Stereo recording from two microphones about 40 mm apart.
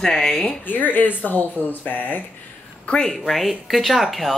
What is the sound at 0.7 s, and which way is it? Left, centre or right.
Speech, left.